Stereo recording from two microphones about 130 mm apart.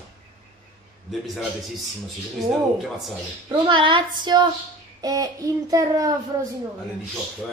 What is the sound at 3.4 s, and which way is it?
Speech, 40° right (ahead or behind).